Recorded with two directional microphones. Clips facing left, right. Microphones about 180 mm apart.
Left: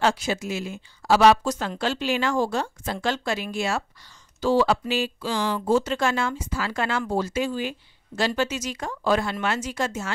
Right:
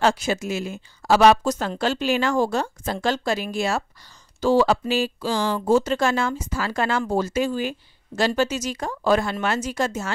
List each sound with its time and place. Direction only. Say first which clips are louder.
0.0 s speech: right 2 dB; 50° right (ahead or behind)